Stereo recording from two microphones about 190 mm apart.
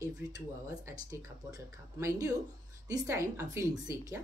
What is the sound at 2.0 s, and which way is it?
Speech, 15° right (ahead or behind).